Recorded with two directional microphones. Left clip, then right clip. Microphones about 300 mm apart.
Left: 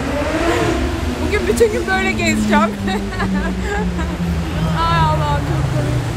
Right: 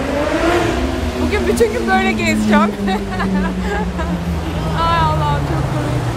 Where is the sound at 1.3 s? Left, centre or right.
Centre.